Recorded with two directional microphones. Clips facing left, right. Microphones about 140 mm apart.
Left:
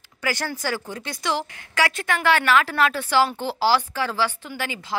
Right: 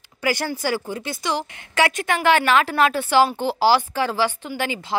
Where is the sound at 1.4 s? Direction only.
20° right (ahead or behind).